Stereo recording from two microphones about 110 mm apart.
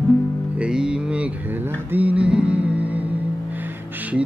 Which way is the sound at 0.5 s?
10° right (ahead or behind).